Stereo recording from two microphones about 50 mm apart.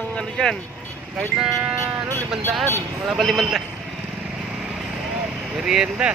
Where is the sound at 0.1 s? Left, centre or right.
Centre.